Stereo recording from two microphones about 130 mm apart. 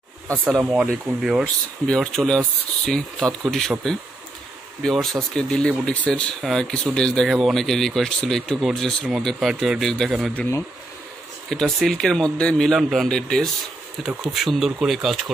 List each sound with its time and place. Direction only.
0.5 s speech: 5° right (ahead or behind)
4.8 s speech: 5° left (ahead or behind)
11.5 s speech: 5° left (ahead or behind)